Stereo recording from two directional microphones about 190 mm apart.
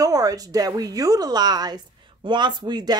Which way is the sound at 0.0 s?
20° right (ahead or behind).